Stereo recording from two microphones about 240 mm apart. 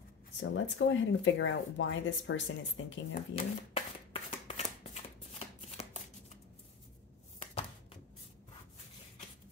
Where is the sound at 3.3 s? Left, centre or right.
Left.